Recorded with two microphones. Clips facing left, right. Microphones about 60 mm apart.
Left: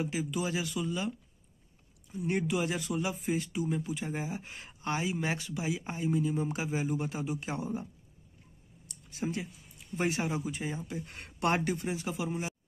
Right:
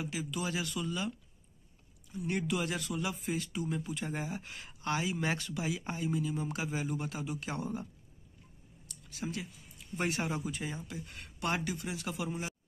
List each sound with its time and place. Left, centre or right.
0.0 s speech: left
2.1 s speech: left
9.1 s speech: left
10.2 s speech: centre
10.5 s speech: left
11.0 s speech: left; by 12.5 s centre